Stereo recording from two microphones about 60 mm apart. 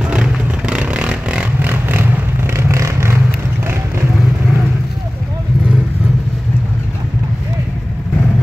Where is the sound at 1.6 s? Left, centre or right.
Right.